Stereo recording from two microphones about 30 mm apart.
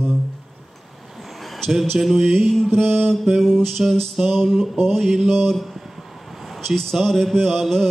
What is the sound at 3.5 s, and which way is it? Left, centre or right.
Speech, centre.